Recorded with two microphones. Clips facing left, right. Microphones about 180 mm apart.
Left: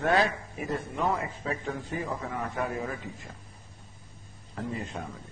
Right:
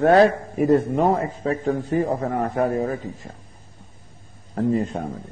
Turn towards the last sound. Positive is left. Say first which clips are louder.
# right 13 dB
turn(degrees=-45)  # may be behind; listen again after turning